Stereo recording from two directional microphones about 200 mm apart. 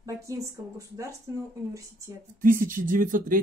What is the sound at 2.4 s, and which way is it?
Speech, 45° right (ahead or behind).